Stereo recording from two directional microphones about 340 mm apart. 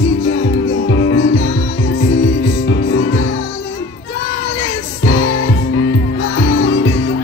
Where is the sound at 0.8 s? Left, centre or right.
Left.